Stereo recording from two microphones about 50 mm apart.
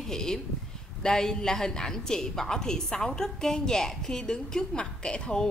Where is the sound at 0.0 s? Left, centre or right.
Centre.